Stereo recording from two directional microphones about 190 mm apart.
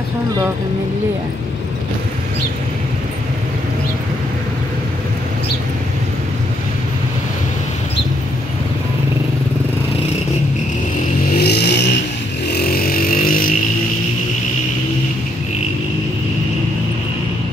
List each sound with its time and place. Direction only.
11.3 s vehicle: 60° left (ahead or behind)